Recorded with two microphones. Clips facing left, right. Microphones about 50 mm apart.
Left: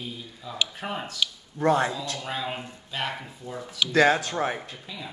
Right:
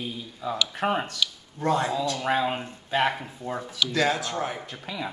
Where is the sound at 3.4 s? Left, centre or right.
Right.